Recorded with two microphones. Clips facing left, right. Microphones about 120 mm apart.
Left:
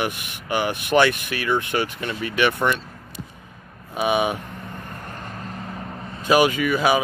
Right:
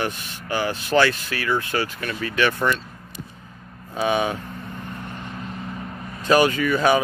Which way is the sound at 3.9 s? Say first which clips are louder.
Left 1 dB; 15° left (ahead or behind).